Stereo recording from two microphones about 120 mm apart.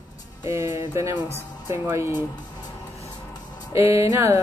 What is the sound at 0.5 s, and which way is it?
Speech, 25° right (ahead or behind).